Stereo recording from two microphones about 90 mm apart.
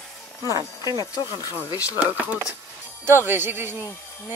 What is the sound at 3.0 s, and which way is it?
Speech, 25° right (ahead or behind).